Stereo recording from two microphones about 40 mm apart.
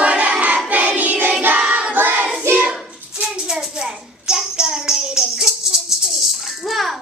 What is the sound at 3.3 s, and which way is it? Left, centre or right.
Child singing, centre.